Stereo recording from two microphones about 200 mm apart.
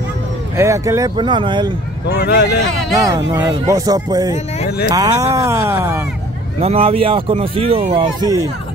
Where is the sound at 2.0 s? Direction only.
55° left (ahead or behind).